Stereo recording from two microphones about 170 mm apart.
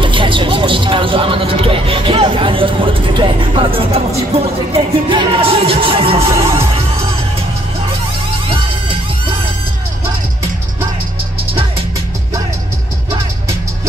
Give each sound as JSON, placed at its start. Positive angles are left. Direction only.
{"t": 0.0, "sound": "vehicle", "side_deg": -30}